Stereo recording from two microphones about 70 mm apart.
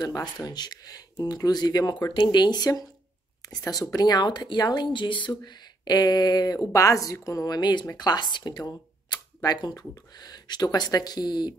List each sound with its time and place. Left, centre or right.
0.2 s speech: left
3.4 s speech: left
3.9 s speech: left
6.7 s a woman's voice: left